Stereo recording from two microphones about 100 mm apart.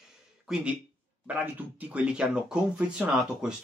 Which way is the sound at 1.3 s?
15° right (ahead or behind).